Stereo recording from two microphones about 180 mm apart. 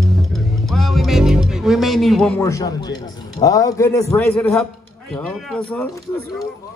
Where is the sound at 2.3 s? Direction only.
20° left (ahead or behind).